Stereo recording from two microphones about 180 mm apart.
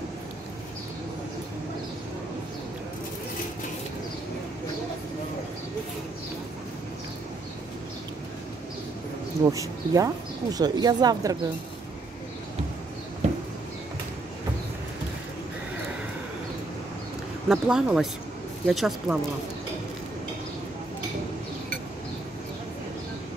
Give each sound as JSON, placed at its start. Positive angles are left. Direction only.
{"t": 9.4, "sound": "speech", "side_deg": -20}
{"t": 17.5, "sound": "speech", "side_deg": -5}